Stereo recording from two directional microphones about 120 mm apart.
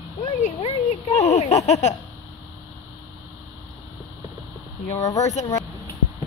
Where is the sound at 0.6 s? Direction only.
60° left (ahead or behind).